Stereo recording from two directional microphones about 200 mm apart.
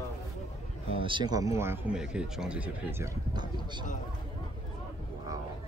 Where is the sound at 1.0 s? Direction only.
25° right (ahead or behind).